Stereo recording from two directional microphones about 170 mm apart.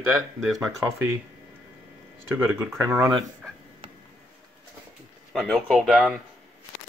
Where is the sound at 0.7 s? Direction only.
15° right (ahead or behind).